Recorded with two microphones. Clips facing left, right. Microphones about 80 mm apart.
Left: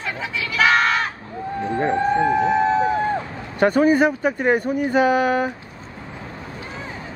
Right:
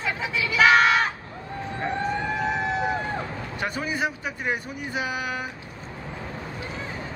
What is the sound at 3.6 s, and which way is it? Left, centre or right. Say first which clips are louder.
Speech: left 13 dB; left.